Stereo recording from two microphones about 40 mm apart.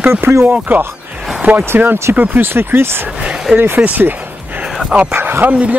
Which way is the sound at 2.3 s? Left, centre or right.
Right.